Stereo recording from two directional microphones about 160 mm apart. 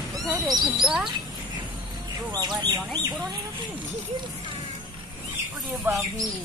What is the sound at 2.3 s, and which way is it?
Speech, 25° right (ahead or behind).